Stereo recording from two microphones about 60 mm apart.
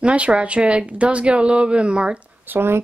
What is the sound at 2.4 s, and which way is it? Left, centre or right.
Speech, right.